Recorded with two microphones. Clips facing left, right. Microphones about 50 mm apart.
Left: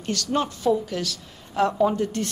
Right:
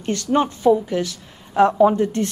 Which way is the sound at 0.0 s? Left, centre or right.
Right.